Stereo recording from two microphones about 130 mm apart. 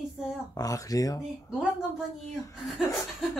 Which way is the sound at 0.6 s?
30° left (ahead or behind).